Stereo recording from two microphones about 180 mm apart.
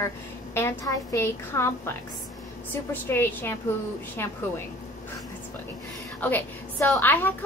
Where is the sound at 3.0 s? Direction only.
15° left (ahead or behind).